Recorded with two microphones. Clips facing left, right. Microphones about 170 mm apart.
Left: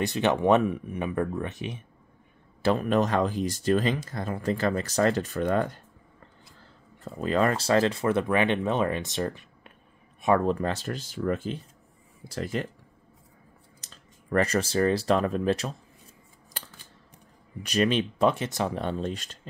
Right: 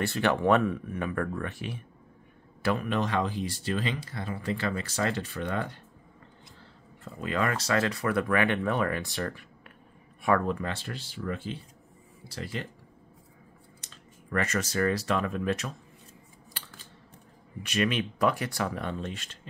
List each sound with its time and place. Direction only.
0.0 s speech: 20° left (ahead or behind)
2.6 s speech: 35° left (ahead or behind)
7.2 s speech: 35° left (ahead or behind)
10.4 s speech: 35° left (ahead or behind)
14.3 s speech: 35° left (ahead or behind)
16.6 s scissors: 45° left (ahead or behind)
17.6 s speech: 35° left (ahead or behind)